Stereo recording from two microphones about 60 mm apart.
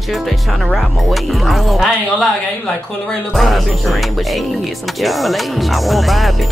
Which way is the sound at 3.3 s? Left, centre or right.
Centre.